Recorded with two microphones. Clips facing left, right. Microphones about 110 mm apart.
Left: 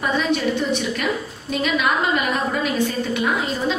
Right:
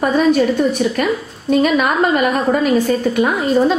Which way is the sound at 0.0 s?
45° right (ahead or behind).